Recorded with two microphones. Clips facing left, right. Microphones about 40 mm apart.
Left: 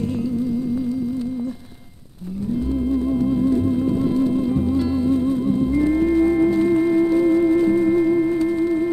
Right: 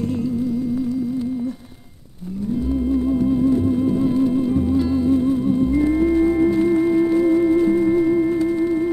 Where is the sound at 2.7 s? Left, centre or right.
Centre.